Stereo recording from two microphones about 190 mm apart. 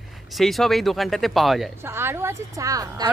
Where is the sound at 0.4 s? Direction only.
Centre (ahead or behind).